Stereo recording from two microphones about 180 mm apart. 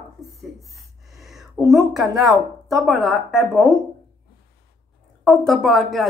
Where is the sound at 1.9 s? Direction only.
Centre (ahead or behind).